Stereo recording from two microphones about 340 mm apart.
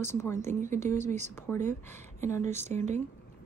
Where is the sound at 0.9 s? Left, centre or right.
Right.